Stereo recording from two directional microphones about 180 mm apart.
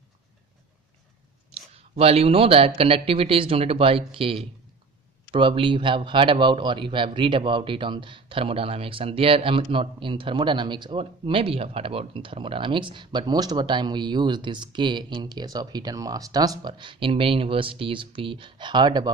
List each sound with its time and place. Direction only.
1.5 s speech: 35° right (ahead or behind)